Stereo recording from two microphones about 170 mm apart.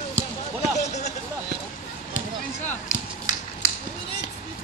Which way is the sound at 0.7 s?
40° left (ahead or behind).